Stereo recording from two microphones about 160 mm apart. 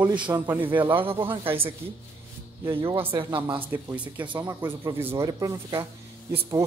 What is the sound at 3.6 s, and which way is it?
Speech, 15° right (ahead or behind).